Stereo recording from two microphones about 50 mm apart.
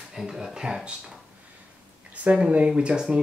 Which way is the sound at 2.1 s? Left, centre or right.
Right.